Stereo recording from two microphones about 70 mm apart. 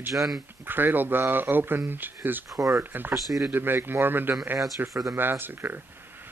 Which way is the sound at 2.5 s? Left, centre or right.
Right.